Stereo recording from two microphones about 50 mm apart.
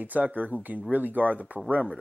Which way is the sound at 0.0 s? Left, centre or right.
Right.